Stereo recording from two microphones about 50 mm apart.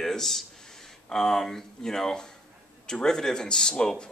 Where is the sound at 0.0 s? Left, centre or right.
Centre.